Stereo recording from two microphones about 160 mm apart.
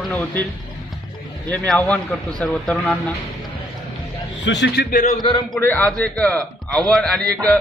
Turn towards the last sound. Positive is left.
turn(degrees=0)  # may be behind; listen again after turning